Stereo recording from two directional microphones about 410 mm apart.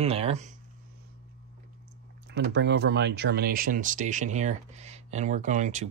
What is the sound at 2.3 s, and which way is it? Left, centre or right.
Speech, right.